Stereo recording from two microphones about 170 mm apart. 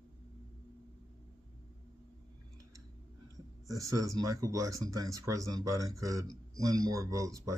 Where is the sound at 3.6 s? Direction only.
20° right (ahead or behind).